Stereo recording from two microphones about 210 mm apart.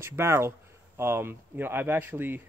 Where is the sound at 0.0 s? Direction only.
10° right (ahead or behind).